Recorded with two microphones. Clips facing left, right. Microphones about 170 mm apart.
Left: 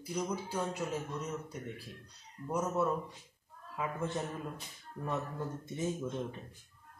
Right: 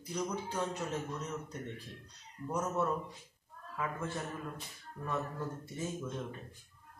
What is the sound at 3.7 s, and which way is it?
Speech, 20° left (ahead or behind).